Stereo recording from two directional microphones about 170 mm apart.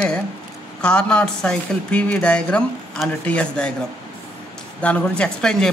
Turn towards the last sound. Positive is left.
turn(degrees=5)  # may be behind; listen again after turning